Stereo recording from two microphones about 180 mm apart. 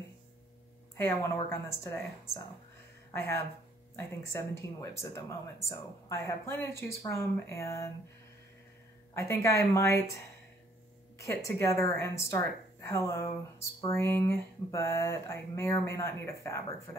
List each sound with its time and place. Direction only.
0.9 s speech: 15° left (ahead or behind)
9.1 s speech: 15° left (ahead or behind)
11.1 s speech: 15° left (ahead or behind)